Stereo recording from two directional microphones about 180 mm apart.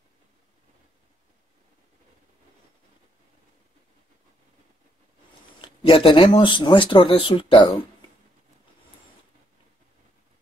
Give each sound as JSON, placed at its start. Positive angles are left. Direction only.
{"t": 5.6, "sound": "speech", "side_deg": 30}